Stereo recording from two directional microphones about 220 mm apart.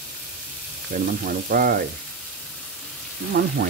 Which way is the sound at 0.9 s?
40° right (ahead or behind).